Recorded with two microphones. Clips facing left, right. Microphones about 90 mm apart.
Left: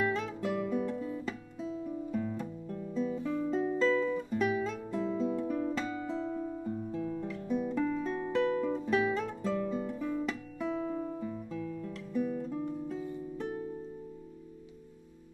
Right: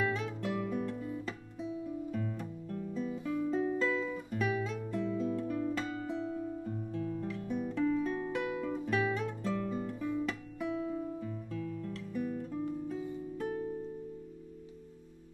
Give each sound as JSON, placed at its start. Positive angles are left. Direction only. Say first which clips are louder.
{"t": 0.0, "sound": "music", "louder": "left 2 dB", "side_deg": 0}
{"t": 0.9, "sound": "guitar", "louder": "left 3 dB", "side_deg": -5}
{"t": 2.1, "sound": "music", "louder": "left 3 dB", "side_deg": 5}
{"t": 6.2, "sound": "music", "louder": "left 2 dB", "side_deg": 40}
{"t": 6.6, "sound": "music", "louder": "left 2 dB", "side_deg": 10}
{"t": 7.3, "sound": "guitar", "louder": "left 3 dB", "side_deg": 15}
{"t": 7.7, "sound": "music", "louder": "even", "side_deg": 5}
{"t": 8.4, "sound": "guitar", "louder": "left 5 dB", "side_deg": -5}
{"t": 10.2, "sound": "guitar", "louder": "left 1 dB", "side_deg": 0}
{"t": 11.1, "sound": "guitar", "louder": "left 2 dB", "side_deg": 10}
{"t": 12.1, "sound": "music", "louder": "left 4 dB", "side_deg": 0}